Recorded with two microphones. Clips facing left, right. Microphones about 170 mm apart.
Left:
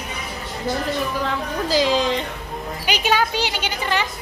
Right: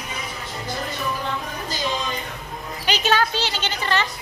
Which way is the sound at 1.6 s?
90° left.